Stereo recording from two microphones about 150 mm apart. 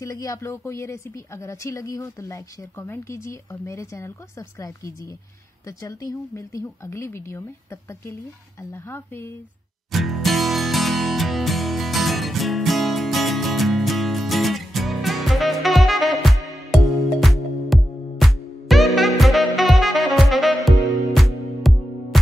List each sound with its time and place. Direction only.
0.0 s speech: 20° left (ahead or behind)
9.8 s music: centre (ahead or behind)
20.7 s music: 20° right (ahead or behind)
21.7 s music: centre (ahead or behind)